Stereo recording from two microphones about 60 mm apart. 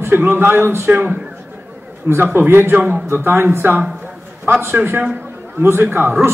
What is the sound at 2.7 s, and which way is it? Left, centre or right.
Speech, right.